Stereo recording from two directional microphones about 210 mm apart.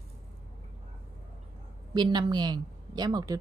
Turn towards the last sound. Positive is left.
turn(degrees=-20)  # may be behind; listen again after turning